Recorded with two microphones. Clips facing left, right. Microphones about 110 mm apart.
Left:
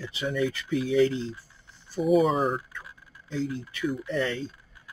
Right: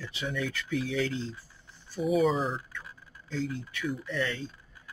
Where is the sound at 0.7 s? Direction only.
45° left (ahead or behind).